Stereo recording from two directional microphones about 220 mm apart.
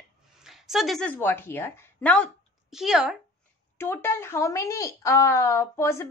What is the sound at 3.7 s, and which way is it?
Speech, 10° left (ahead or behind).